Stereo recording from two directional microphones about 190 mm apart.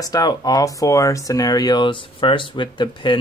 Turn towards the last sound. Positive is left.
turn(degrees=25)  # may be behind; listen again after turning